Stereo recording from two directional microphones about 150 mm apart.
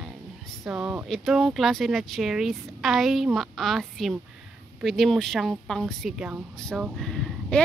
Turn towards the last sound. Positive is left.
turn(degrees=5)  # may be behind; listen again after turning